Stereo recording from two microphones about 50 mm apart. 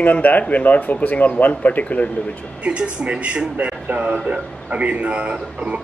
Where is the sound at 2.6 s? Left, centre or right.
Right.